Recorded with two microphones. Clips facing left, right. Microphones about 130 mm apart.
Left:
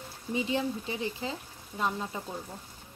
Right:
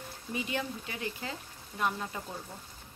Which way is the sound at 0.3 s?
25° left (ahead or behind).